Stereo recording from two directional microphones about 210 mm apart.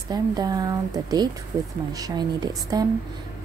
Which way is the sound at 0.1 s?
20° right (ahead or behind).